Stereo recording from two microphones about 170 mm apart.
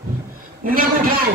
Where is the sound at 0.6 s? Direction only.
55° right (ahead or behind).